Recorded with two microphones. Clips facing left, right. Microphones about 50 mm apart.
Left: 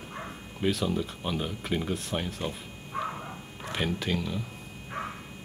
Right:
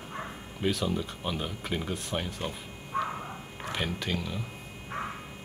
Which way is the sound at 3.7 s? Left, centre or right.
Centre.